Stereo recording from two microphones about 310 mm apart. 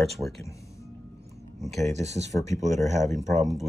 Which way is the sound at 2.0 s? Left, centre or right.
Right.